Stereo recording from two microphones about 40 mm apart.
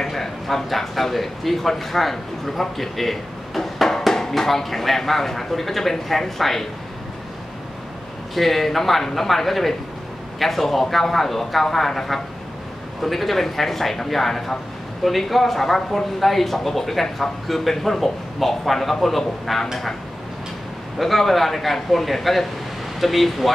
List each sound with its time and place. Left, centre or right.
0.0 s speech: centre
8.4 s speech: centre
21.0 s speech: centre